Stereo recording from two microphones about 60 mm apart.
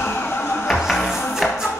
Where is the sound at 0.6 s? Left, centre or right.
Centre.